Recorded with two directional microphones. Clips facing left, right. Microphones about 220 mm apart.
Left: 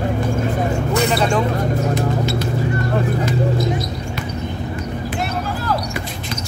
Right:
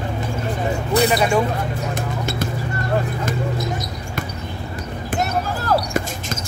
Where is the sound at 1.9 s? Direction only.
50° right (ahead or behind).